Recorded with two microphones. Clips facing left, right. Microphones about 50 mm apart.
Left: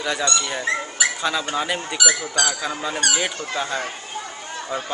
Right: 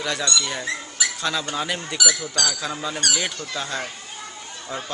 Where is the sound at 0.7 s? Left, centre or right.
Left.